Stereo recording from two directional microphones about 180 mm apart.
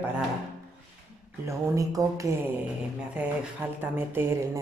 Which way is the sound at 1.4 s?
20° right (ahead or behind).